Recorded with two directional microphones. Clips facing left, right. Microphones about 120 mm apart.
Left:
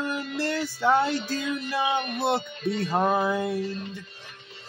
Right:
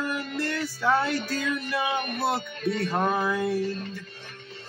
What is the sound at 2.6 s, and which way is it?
Speech, 55° right (ahead or behind).